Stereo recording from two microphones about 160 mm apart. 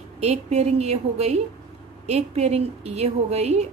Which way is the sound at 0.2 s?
45° right (ahead or behind).